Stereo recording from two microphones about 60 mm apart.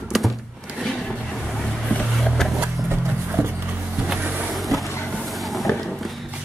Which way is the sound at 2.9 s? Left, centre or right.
Right.